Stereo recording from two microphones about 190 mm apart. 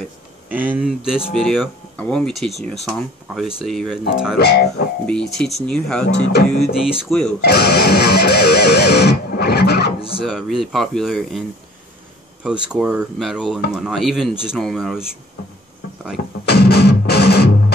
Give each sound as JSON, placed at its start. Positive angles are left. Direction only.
{"t": 0.5, "sound": "speech", "side_deg": -10}
{"t": 4.4, "sound": "music", "side_deg": 60}
{"t": 5.0, "sound": "speech", "side_deg": 5}
{"t": 7.4, "sound": "music", "side_deg": 60}
{"t": 10.2, "sound": "speech", "side_deg": 0}
{"t": 12.4, "sound": "speech", "side_deg": -5}
{"t": 16.4, "sound": "music", "side_deg": 60}